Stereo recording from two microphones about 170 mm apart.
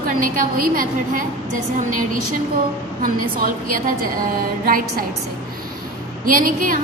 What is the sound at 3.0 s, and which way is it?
Speech, 55° right (ahead or behind).